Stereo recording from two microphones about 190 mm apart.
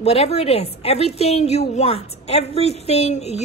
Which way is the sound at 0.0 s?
35° left (ahead or behind).